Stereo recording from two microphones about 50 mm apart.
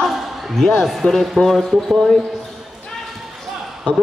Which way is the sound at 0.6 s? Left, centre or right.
Centre.